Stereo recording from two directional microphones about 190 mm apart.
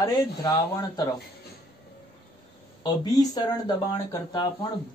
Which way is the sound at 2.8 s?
20° left (ahead or behind).